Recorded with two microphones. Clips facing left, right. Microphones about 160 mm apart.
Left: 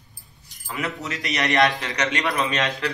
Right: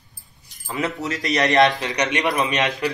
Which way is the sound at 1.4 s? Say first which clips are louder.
Right 3 dB; 25° right (ahead or behind).